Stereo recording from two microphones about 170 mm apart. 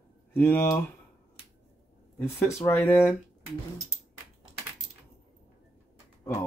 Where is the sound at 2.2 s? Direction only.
15° left (ahead or behind).